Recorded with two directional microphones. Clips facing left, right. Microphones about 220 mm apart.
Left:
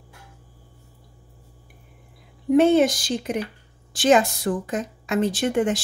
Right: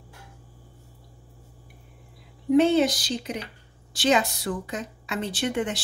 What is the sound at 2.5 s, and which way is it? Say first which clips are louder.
A woman's voice: left 3 dB; 50° left (ahead or behind).